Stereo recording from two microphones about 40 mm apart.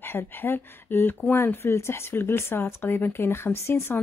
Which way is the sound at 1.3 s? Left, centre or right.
Left.